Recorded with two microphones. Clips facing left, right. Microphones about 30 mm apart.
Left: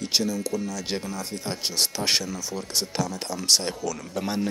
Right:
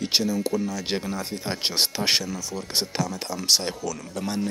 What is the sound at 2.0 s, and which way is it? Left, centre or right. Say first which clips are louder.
Speech: right 1 dB; centre.